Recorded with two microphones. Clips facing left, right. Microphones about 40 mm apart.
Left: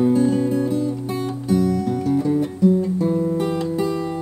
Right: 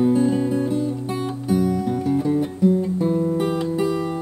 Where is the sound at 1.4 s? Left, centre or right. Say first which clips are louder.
Left 1 dB; centre.